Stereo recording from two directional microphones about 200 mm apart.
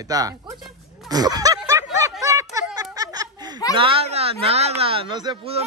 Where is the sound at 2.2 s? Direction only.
15° right (ahead or behind).